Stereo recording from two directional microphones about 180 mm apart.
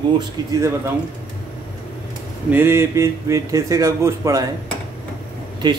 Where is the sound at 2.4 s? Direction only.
10° right (ahead or behind).